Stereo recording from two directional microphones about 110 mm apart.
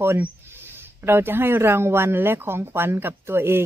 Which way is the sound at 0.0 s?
20° right (ahead or behind).